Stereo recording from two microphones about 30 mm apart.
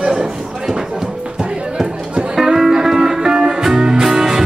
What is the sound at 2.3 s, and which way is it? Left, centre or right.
Music, centre.